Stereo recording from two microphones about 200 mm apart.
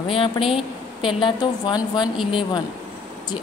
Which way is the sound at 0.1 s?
25° left (ahead or behind).